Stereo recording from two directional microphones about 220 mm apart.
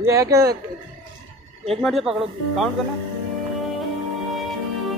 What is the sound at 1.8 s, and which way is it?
Speech, centre (ahead or behind).